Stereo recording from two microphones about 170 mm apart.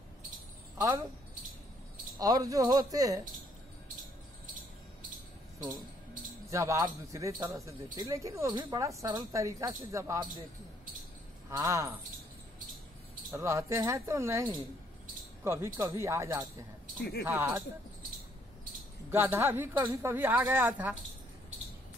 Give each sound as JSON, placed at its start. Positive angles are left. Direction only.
{"t": 0.7, "sound": "speech", "side_deg": -25}
{"t": 2.1, "sound": "speech", "side_deg": -20}
{"t": 6.5, "sound": "speech", "side_deg": -20}
{"t": 11.5, "sound": "speech", "side_deg": -20}
{"t": 13.3, "sound": "a woman's voice", "side_deg": -15}
{"t": 19.0, "sound": "a woman's voice", "side_deg": -15}